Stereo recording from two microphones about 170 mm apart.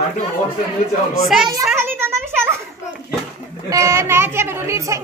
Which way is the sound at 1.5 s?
15° right (ahead or behind).